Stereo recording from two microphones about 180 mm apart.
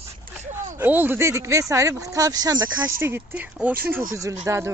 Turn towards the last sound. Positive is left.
turn(degrees=-15)  # may be behind; listen again after turning